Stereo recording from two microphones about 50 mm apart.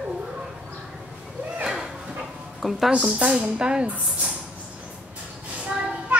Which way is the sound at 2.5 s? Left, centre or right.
Centre.